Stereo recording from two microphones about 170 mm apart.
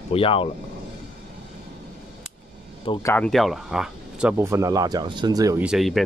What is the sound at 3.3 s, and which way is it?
Speech, centre (ahead or behind).